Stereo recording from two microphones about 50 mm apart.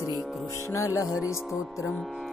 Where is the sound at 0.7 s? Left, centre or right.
Left.